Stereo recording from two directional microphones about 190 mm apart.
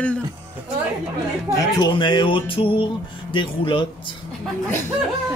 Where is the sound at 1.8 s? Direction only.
25° left (ahead or behind).